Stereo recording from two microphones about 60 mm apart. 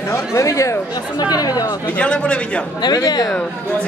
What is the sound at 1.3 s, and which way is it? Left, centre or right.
Speech, left.